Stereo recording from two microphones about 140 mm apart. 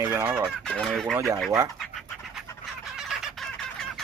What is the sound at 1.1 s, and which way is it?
Fowl, 20° right (ahead or behind).